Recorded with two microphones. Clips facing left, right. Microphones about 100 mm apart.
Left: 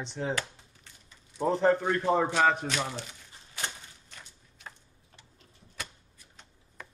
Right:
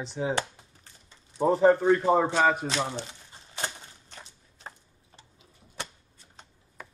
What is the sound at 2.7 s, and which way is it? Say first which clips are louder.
Speech: right 3 dB; 25° right (ahead or behind).